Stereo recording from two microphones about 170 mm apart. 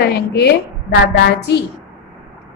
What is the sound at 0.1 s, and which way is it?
Speech, 70° left (ahead or behind).